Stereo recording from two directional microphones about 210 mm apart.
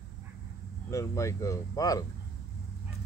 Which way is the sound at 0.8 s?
15° left (ahead or behind).